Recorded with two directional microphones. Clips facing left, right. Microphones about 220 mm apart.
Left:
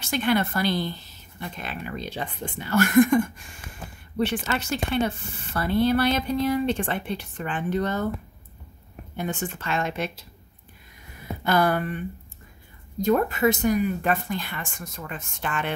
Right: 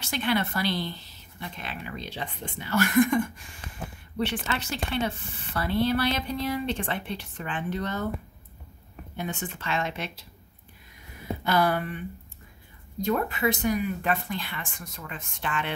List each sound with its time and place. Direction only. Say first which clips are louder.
0.0 s speech: left 4 dB; 45° left (ahead or behind)
4.2 s speech: left 4 dB; 45° left (ahead or behind)
9.1 s speech: left 4 dB; 45° left (ahead or behind)
11.4 s speech: left 3 dB; 50° left (ahead or behind)
13.0 s speech: left 5 dB; 45° left (ahead or behind)